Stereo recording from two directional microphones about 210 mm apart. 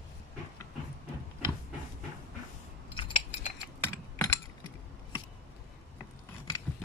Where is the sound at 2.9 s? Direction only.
25° left (ahead or behind).